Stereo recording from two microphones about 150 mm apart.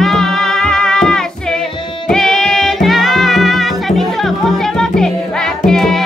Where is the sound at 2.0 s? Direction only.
5° left (ahead or behind).